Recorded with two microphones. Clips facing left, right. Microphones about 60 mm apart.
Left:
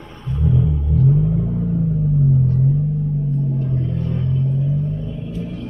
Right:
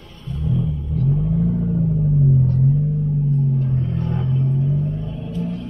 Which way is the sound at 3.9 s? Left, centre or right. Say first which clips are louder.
Even; right.